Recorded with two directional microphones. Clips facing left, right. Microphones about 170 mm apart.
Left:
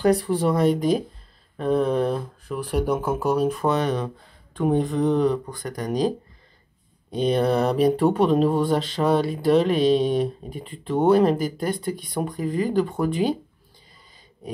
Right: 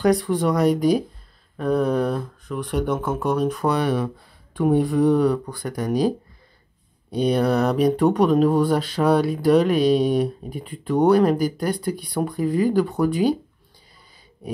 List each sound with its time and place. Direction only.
0.0 s speech: 30° left (ahead or behind)
1.8 s speech: 5° right (ahead or behind)
7.3 s speech: centre (ahead or behind)